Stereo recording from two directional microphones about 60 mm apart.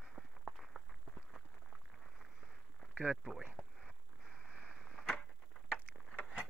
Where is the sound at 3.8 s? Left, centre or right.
Centre.